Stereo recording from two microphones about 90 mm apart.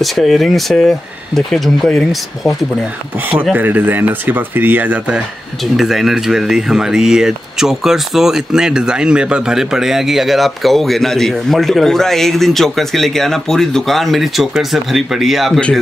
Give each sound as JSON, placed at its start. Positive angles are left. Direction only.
{"t": 0.0, "sound": "speech", "side_deg": 0}
{"t": 3.5, "sound": "speech", "side_deg": -20}
{"t": 5.8, "sound": "speech", "side_deg": -5}